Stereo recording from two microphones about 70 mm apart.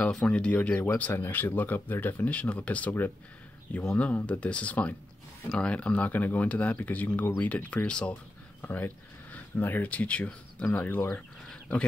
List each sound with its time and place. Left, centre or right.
0.3 s speech: left
8.6 s speech: left